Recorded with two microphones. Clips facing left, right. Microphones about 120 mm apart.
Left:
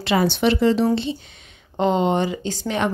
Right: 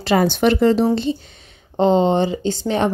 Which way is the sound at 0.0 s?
45° right (ahead or behind).